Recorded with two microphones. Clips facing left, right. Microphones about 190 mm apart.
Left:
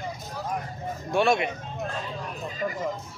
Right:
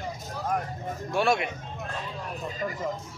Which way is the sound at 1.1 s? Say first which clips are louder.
Left 2 dB; 5° right (ahead or behind).